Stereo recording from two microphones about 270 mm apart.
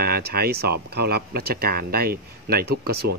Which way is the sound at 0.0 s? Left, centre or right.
Right.